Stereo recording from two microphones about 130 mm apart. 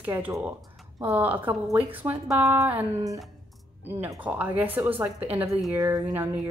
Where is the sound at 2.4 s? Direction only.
25° right (ahead or behind).